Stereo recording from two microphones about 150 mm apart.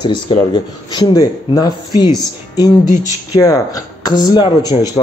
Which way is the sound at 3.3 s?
25° left (ahead or behind).